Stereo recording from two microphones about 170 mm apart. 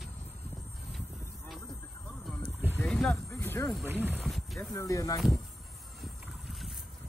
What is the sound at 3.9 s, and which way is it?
Speech, 10° right (ahead or behind).